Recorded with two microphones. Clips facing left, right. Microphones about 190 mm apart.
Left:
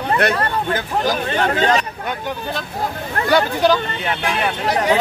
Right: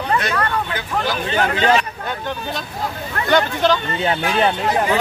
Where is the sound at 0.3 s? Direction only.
30° left (ahead or behind).